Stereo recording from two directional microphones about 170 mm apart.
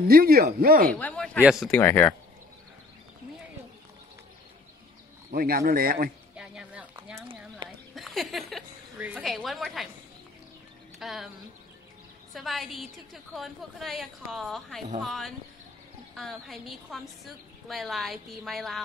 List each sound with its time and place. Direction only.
0.1 s a man's voice: 60° right (ahead or behind)
0.9 s a woman's voice: 5° left (ahead or behind)
1.8 s speech: 10° left (ahead or behind)
5.3 s a man's voice: 60° right (ahead or behind)
6.3 s a sound: 5° right (ahead or behind)
7.9 s a woman's voice: centre (ahead or behind)
11.0 s speech: centre (ahead or behind)
12.4 s a woman's voice: centre (ahead or behind)